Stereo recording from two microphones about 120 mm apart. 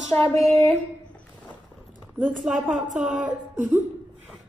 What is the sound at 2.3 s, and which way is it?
Speech, 5° right (ahead or behind).